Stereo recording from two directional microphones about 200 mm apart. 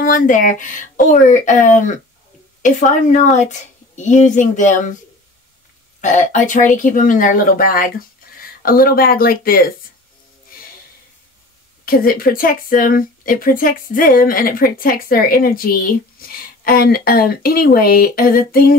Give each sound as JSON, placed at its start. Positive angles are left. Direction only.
{"t": 0.0, "sound": "a woman's voice", "side_deg": 40}
{"t": 5.9, "sound": "a woman's voice", "side_deg": 40}
{"t": 11.8, "sound": "speech", "side_deg": 45}